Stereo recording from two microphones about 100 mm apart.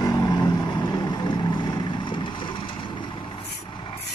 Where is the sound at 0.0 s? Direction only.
35° left (ahead or behind).